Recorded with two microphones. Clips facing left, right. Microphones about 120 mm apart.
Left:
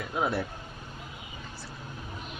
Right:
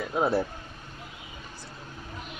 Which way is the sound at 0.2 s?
30° right (ahead or behind).